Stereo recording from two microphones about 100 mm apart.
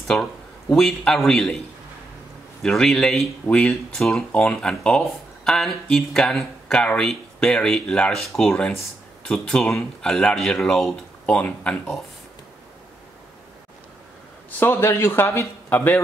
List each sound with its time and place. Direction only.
0.1 s a man's voice: 10° left (ahead or behind)
2.6 s speech: 5° left (ahead or behind)
14.6 s speech: 20° left (ahead or behind)